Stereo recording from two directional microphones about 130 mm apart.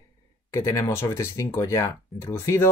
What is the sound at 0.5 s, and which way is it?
Speech, 20° left (ahead or behind).